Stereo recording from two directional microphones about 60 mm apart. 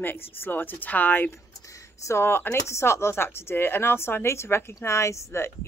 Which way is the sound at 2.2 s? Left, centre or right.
Left.